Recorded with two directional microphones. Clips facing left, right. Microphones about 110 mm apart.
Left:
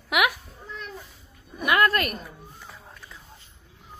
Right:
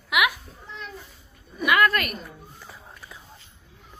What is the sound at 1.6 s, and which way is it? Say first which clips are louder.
Speech: right 1 dB; 35° left (ahead or behind).